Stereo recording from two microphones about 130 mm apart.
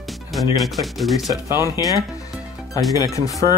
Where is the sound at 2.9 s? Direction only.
25° left (ahead or behind).